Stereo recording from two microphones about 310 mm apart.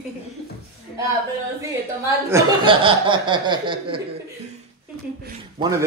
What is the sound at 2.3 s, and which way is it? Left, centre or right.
Speech, centre.